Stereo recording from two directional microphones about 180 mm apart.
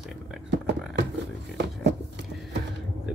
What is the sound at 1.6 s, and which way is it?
Speech, 70° right (ahead or behind).